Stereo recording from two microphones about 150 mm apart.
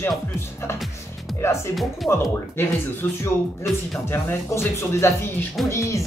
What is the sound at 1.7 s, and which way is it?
Speech, centre (ahead or behind).